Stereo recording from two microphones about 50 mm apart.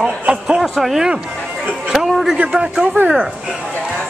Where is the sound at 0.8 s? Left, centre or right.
Centre.